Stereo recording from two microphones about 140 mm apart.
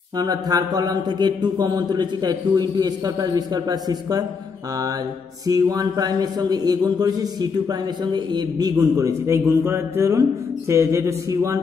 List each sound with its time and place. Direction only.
0.2 s a man's voice: 25° right (ahead or behind)
5.5 s a man's voice: 25° right (ahead or behind)